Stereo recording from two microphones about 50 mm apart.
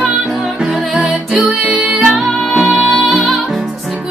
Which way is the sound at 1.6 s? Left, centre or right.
Right.